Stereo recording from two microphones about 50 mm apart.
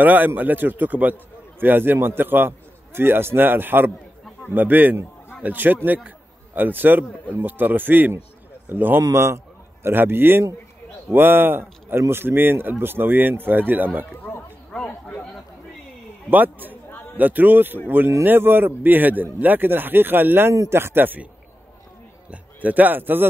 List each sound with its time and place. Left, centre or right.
0.0 s a man's voice: right
9.1 s a man's voice: right
9.8 s a man's voice: right
14.9 s speech: left
16.3 s speech: right
16.9 s a sound: left
17.2 s a man's voice: right
22.3 s speech: right